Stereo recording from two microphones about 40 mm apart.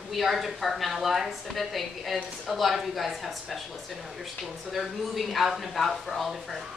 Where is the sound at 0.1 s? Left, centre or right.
Centre.